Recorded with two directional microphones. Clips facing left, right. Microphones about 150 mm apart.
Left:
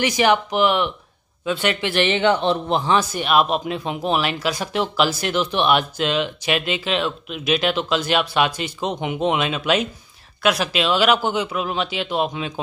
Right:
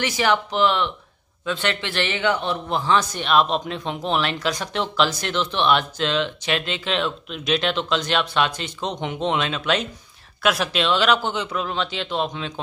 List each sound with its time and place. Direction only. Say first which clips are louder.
0.0 s speech: left 3 dB; 15° left (ahead or behind)
2.9 s speech: even; 10° left (ahead or behind)